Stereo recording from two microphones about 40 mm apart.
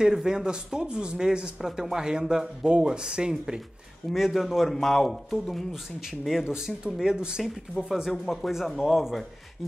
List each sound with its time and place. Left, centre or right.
0.0 s speech: centre
4.1 s speech: centre
4.7 s speech: centre
6.4 s speech: centre